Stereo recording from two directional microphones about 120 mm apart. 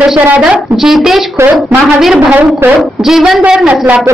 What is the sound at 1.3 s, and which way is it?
Speech, 20° right (ahead or behind).